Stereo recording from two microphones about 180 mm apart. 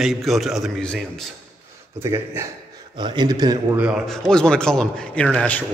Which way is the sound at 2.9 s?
25° right (ahead or behind).